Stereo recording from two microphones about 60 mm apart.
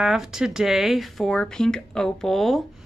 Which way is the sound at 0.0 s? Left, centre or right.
Centre.